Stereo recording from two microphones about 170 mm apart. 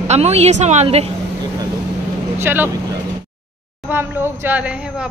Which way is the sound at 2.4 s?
10° right (ahead or behind).